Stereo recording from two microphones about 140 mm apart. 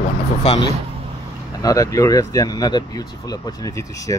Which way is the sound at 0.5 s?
45° left (ahead or behind).